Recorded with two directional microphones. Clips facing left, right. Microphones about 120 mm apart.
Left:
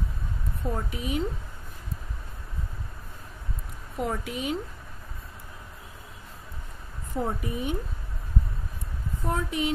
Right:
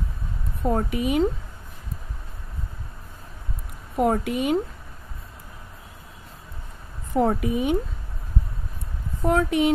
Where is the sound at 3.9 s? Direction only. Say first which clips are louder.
Right 9 dB; 55° right (ahead or behind).